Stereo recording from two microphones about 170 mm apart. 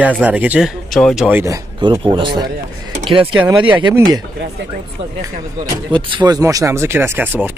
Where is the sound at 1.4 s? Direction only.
20° right (ahead or behind).